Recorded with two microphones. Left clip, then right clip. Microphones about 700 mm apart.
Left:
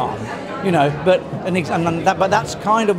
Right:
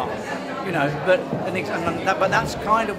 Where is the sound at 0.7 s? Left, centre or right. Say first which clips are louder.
Left 5 dB; left.